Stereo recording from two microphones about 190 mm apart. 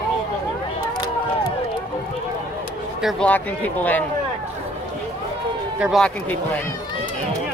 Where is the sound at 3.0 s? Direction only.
Centre (ahead or behind).